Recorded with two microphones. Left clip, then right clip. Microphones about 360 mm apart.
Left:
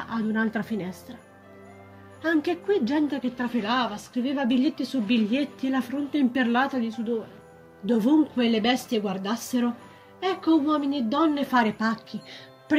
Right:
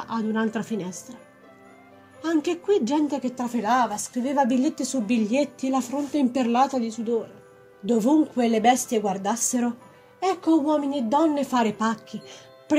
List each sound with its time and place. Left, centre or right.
0.0 s a woman's voice: centre
2.2 s a woman's voice: centre